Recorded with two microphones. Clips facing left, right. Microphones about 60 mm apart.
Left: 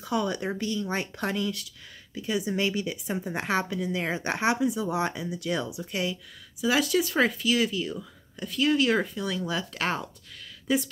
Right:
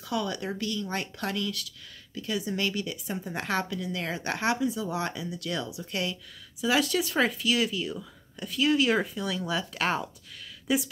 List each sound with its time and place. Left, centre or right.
0.0 s speech: left
5.9 s speech: centre